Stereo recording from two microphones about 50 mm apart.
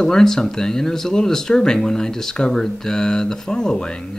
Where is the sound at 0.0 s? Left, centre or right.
Centre.